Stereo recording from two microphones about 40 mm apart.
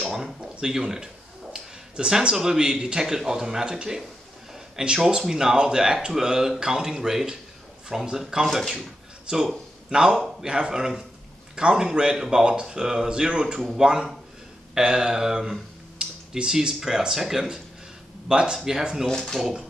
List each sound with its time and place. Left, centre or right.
0.4 s speech: centre
8.5 s speech: centre
9.3 s a man's voice: right
19.0 s speech: centre